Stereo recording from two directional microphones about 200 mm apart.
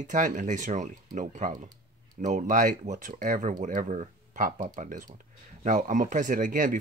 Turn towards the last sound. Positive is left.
turn(degrees=-40)  # may be behind; listen again after turning